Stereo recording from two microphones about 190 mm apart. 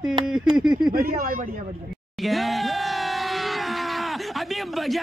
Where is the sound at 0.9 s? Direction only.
50° right (ahead or behind).